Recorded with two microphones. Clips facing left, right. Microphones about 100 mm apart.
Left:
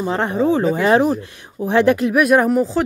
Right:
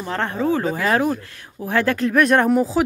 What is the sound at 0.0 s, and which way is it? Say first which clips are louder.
Speech: left 4 dB; 20° left (ahead or behind).